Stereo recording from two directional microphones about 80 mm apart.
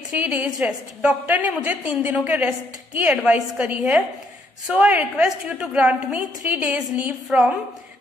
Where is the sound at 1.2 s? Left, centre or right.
Right.